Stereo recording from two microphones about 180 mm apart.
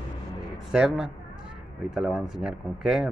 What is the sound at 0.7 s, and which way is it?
Speech, 5° right (ahead or behind).